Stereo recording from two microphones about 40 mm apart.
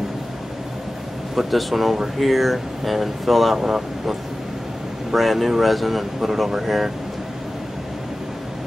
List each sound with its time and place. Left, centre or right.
1.3 s speech: centre